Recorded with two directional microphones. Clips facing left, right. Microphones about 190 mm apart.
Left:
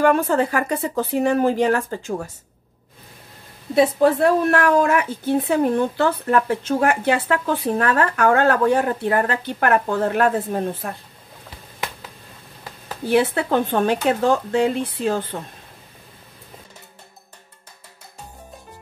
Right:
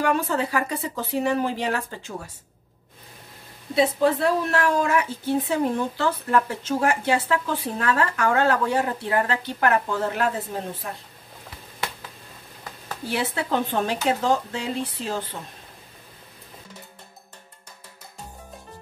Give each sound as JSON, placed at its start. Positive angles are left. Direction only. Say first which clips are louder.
{"t": 0.0, "sound": "speech", "louder": "left 6 dB", "side_deg": 50}
{"t": 3.7, "sound": "speech", "louder": "left 4 dB", "side_deg": 50}
{"t": 13.1, "sound": "speech", "louder": "left 7 dB", "side_deg": 55}